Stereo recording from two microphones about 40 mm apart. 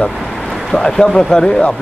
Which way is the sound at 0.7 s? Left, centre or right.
Centre.